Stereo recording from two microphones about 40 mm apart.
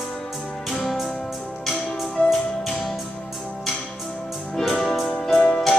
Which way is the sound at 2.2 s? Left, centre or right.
Left.